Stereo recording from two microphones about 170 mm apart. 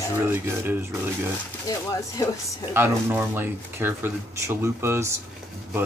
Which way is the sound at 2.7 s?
15° right (ahead or behind).